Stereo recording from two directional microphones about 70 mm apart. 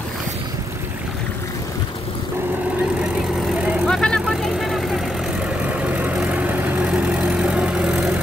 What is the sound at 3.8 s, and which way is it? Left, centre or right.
Vehicle, centre.